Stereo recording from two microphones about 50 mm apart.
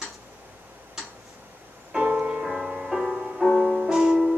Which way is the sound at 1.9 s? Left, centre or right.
Centre.